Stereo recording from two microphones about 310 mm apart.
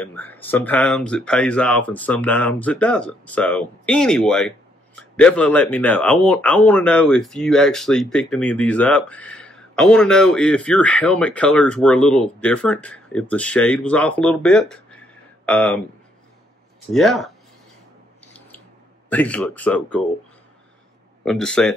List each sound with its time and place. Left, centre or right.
0.0 s speech: centre
16.9 s speech: centre
19.0 s speech: centre
21.2 s speech: centre